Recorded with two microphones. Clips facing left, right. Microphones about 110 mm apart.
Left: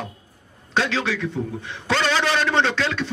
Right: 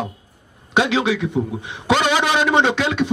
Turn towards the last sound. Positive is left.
turn(degrees=-15)  # may be behind; listen again after turning